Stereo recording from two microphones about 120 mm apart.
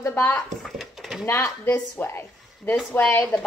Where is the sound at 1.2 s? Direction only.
25° left (ahead or behind).